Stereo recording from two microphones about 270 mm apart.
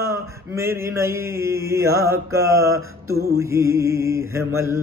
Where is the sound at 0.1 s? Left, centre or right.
Centre.